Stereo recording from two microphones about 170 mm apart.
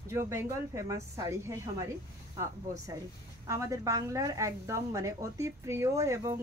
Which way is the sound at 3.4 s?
20° right (ahead or behind).